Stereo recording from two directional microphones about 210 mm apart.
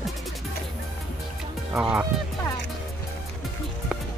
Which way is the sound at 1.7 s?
5° right (ahead or behind).